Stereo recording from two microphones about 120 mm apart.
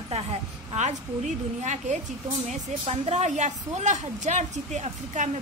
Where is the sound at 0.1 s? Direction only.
65° right (ahead or behind); by 2.0 s 85° right.